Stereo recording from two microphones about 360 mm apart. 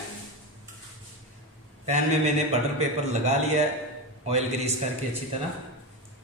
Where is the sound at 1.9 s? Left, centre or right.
Centre.